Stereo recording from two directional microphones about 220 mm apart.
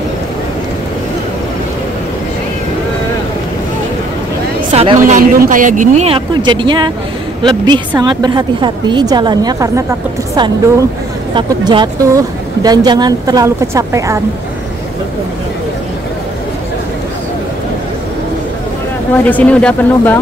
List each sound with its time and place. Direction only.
4.7 s a man's voice: 30° right (ahead or behind); by 9.8 s 15° right (ahead or behind)
11.3 s a man's voice: 20° right (ahead or behind)
19.2 s speech: 5° left (ahead or behind)